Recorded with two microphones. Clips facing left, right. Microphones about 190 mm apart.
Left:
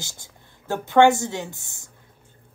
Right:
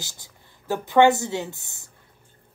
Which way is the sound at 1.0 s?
20° right (ahead or behind).